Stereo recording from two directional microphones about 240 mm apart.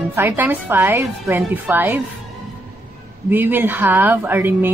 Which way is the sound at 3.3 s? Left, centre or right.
Centre.